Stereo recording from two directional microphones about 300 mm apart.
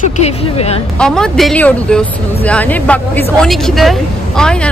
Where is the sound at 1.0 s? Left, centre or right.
Centre.